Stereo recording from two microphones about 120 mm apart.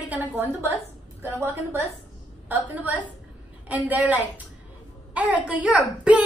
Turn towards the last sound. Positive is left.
turn(degrees=-10)  # may be behind; listen again after turning